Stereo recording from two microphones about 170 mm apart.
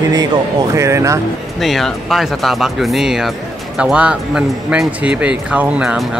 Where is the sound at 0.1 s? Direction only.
20° right (ahead or behind).